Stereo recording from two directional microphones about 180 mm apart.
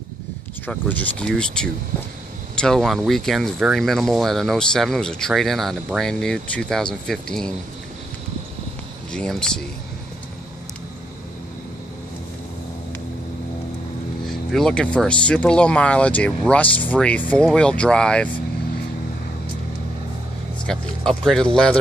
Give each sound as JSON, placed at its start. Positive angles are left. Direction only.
{"t": 0.7, "sound": "speech", "side_deg": 5}
{"t": 9.1, "sound": "speech", "side_deg": 5}
{"t": 14.2, "sound": "speech", "side_deg": 0}
{"t": 20.6, "sound": "speech", "side_deg": 5}